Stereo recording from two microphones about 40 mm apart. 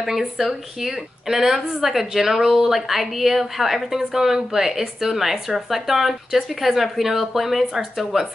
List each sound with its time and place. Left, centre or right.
0.0 s speech: centre
1.3 s speech: centre
1.7 s a woman's voice: centre